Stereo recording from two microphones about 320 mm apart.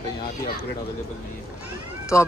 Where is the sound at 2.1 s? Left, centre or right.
Centre.